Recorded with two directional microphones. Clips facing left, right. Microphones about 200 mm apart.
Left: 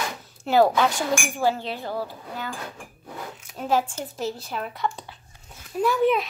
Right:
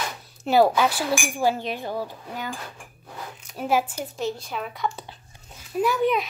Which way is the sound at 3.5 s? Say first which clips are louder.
Even; 10° right (ahead or behind).